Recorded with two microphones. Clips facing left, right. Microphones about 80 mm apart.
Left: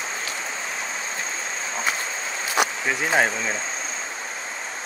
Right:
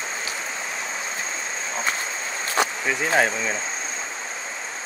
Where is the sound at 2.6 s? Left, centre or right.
Centre.